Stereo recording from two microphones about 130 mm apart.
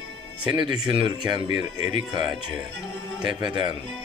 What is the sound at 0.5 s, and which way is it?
Speech, 40° right (ahead or behind).